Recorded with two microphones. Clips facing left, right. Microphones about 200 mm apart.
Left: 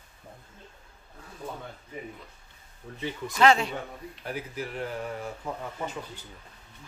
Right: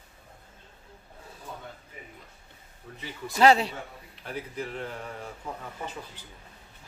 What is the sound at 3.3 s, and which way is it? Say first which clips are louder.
Speech: right 2 dB; 35° right (ahead or behind).